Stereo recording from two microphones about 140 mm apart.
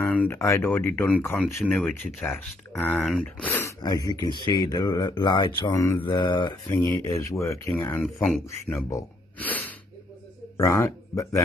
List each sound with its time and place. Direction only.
0.0 s speech: 10° left (ahead or behind)
3.8 s speech: 30° left (ahead or behind)
5.5 s speech: 20° left (ahead or behind)
6.0 s mantra: 30° left (ahead or behind)
6.7 s speech: 20° left (ahead or behind)